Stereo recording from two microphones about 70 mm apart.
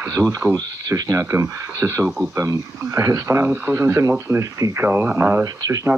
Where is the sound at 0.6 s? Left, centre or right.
Right.